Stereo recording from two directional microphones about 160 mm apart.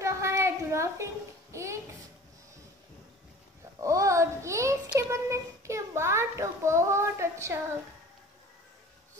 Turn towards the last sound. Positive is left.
turn(degrees=-15)  # may be behind; listen again after turning